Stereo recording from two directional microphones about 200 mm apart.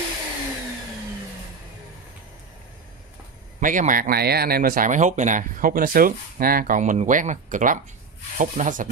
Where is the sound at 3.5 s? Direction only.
40° right (ahead or behind).